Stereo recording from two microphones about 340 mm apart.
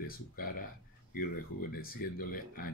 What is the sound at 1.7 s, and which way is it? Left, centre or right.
Speech, left.